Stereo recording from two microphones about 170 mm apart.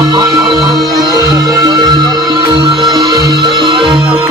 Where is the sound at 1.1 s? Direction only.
25° right (ahead or behind).